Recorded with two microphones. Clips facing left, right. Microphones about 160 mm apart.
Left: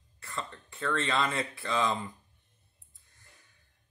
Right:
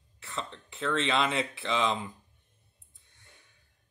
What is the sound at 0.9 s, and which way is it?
Speech, 25° right (ahead or behind).